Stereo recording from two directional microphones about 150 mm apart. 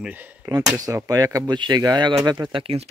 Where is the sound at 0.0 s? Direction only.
10° right (ahead or behind).